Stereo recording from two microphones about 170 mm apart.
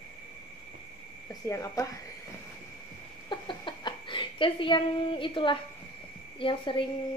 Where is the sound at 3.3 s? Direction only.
25° left (ahead or behind).